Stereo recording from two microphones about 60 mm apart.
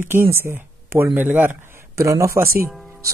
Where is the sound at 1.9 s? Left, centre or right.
Right.